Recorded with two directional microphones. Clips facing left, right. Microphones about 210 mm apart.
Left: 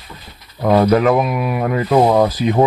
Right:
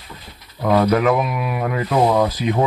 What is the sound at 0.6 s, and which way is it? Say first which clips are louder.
Speech: left 3 dB; 35° left (ahead or behind).